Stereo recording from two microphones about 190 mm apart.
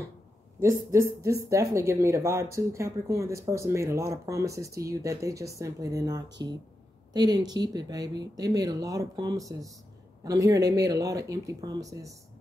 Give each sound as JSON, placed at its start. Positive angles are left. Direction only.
{"t": 0.6, "sound": "speech", "side_deg": -15}